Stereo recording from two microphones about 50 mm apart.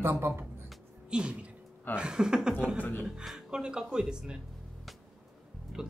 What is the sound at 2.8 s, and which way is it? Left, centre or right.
Speech, left.